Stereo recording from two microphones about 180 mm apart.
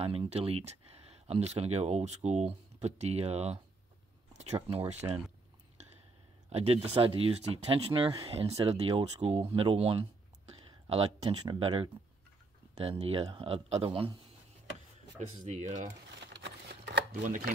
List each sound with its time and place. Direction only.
0.0 s speech: 35° right (ahead or behind)
6.5 s speech: 35° right (ahead or behind)
15.1 s speech: 40° right (ahead or behind)
15.9 s shuffling cards: 80° right